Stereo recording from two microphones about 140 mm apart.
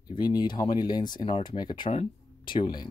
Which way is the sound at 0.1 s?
30° left (ahead or behind).